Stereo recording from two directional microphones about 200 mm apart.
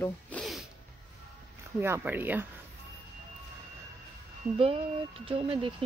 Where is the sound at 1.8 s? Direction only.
10° right (ahead or behind).